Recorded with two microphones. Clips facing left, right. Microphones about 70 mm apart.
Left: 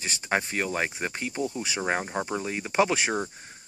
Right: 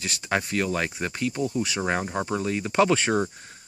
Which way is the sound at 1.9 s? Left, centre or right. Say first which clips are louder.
Right 2 dB; centre.